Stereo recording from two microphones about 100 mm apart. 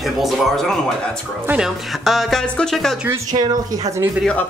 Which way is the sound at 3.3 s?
45° right (ahead or behind).